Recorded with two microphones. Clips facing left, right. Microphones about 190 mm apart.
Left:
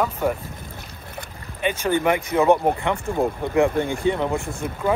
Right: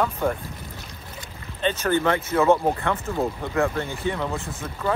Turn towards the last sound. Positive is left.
turn(degrees=15)  # may be behind; listen again after turning